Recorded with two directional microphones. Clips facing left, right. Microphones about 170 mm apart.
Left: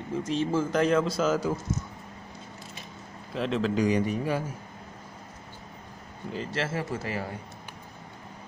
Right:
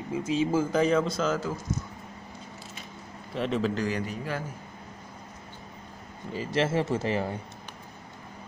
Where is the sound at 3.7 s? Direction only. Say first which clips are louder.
Left 5 dB; 20° left (ahead or behind).